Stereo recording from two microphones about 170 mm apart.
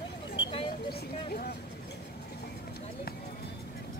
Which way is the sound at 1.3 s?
60° left (ahead or behind).